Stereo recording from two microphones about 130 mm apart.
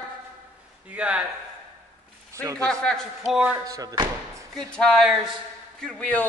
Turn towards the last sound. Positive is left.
turn(degrees=10)  # may be behind; listen again after turning